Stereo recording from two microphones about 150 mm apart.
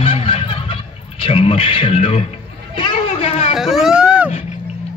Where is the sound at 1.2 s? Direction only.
40° left (ahead or behind).